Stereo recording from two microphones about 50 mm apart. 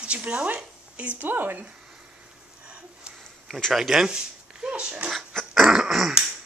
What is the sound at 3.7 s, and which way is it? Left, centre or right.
Speech, centre.